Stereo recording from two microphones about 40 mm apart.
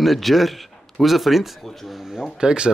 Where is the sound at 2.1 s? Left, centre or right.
Centre.